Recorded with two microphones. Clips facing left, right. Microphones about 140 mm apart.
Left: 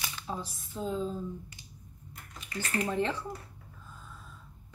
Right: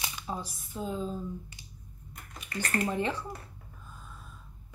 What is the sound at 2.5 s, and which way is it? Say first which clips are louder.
Speech: right 2 dB; 55° right (ahead or behind).